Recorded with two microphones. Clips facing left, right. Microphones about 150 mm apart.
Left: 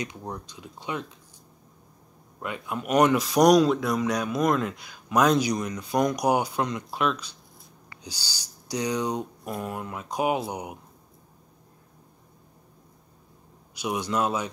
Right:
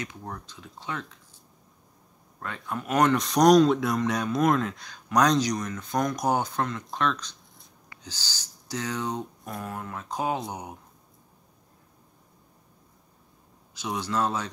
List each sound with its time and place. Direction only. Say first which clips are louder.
0.0 s speech: left 3 dB; 15° left (ahead or behind)
2.4 s speech: left 2 dB; 10° left (ahead or behind)
13.7 s speech: left 2 dB; 15° left (ahead or behind)